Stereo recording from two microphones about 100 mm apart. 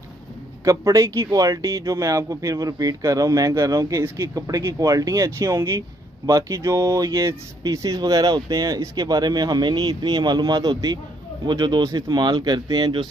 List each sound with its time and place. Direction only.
0.7 s speech: 35° right (ahead or behind)